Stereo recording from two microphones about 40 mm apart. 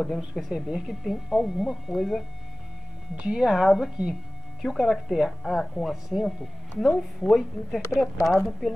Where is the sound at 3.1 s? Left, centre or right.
Right.